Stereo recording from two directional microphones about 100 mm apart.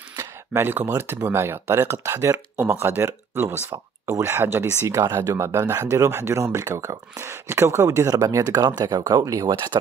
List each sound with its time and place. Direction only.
0.1 s speech: 25° right (ahead or behind)